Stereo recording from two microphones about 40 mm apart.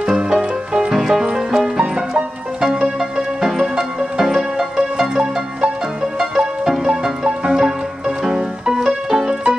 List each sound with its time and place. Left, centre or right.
0.0 s music: centre
0.9 s music: centre
8.7 s music: centre